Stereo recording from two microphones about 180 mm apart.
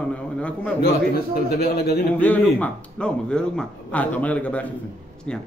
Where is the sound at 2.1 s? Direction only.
10° left (ahead or behind).